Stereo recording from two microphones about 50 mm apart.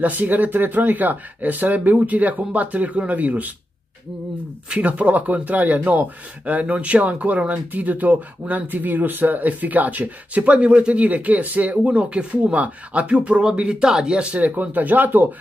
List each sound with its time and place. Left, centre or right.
0.0 s a man's voice: right
4.6 s a man's voice: right
14.5 s a man's voice: right